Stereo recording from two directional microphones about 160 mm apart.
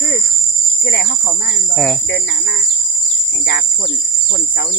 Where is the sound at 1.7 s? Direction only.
5° left (ahead or behind).